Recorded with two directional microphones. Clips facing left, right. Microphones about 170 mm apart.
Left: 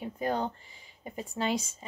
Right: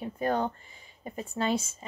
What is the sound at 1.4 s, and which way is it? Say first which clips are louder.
Speech: right 2 dB; 15° left (ahead or behind).